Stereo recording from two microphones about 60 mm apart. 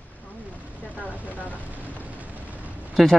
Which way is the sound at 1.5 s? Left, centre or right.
Right.